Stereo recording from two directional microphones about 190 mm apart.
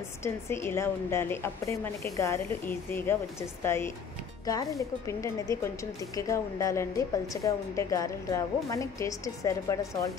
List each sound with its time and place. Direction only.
0.2 s a woman's voice: 15° left (ahead or behind)